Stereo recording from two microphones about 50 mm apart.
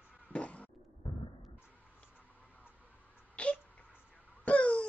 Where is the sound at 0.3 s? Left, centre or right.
Left.